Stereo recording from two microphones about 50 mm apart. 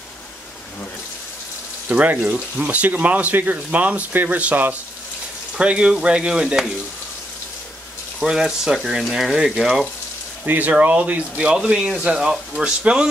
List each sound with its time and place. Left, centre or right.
1.9 s speech: right
5.6 s speech: right
8.2 s speech: centre
10.4 s speech: right
10.7 s speech: right
11.3 s speech: centre